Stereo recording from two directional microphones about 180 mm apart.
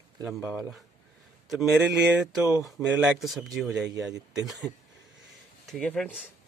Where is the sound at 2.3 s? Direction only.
15° right (ahead or behind).